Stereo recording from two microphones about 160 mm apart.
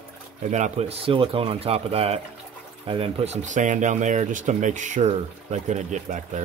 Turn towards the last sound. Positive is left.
turn(degrees=-50)  # may be behind; listen again after turning